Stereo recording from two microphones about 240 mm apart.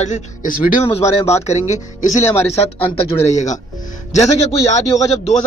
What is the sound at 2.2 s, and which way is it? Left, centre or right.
Speech, centre.